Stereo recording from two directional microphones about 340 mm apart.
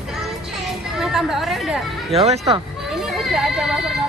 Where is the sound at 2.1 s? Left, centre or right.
Centre.